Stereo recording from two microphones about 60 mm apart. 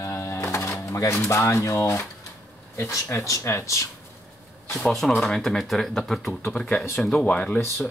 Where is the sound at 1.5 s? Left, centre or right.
Left.